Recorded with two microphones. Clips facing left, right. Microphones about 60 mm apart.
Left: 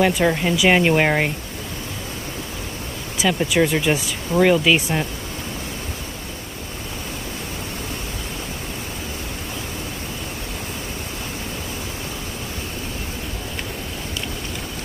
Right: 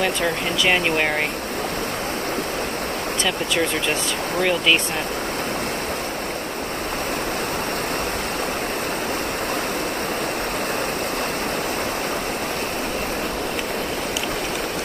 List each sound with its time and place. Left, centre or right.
0.0 s speech: centre
3.2 s speech: centre